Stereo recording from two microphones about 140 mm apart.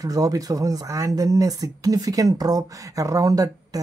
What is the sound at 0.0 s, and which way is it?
Speech, 25° right (ahead or behind).